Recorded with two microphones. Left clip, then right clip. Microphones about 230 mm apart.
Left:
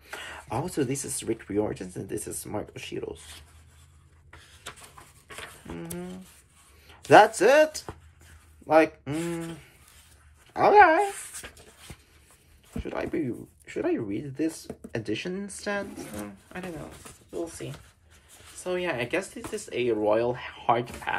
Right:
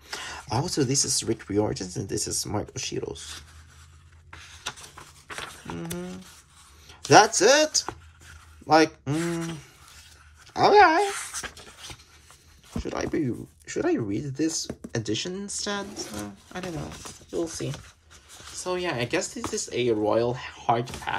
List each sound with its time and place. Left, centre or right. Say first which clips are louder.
0.1 s speech: right 3 dB; centre
5.8 s speech: right 1 dB; centre
10.5 s speech: even; centre
12.8 s speech: right 2 dB; centre
17.3 s speech: right 5 dB; right
18.6 s speech: right 1 dB; centre